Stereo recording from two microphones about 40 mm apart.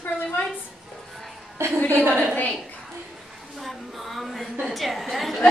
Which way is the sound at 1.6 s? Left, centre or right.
Right.